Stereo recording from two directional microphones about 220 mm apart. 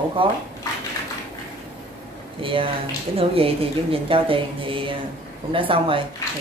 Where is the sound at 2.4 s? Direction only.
25° right (ahead or behind).